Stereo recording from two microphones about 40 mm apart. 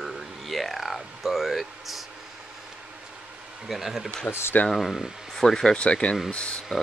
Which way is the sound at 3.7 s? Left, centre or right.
Centre.